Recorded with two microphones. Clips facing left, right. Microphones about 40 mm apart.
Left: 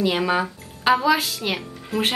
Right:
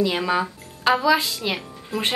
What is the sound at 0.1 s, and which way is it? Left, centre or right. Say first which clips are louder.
A woman's voice: left 1 dB; centre.